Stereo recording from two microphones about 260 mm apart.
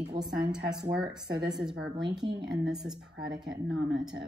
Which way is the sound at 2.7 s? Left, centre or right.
Centre.